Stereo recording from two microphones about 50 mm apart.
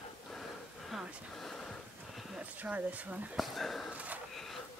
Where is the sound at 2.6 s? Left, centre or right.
Right.